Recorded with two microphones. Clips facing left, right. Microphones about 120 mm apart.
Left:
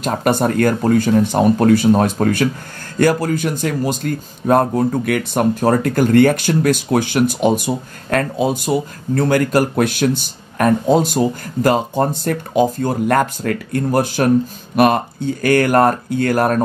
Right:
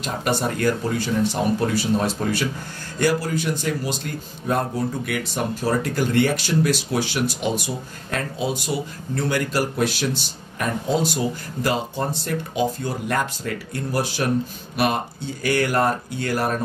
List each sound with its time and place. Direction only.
0.0 s speech: 50° left (ahead or behind)